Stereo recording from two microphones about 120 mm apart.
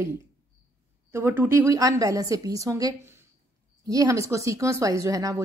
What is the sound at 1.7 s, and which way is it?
A woman's voice, 30° right (ahead or behind).